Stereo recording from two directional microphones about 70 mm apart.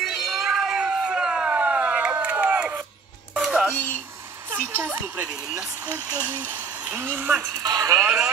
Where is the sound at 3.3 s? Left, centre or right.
Centre.